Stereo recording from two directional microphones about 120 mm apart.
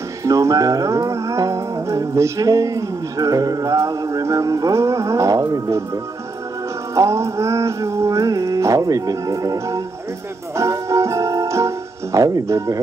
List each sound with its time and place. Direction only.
0.2 s music: 25° right (ahead or behind)
7.0 s music: 25° right (ahead or behind)